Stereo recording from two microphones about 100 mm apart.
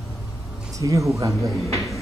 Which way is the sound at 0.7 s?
30° right (ahead or behind).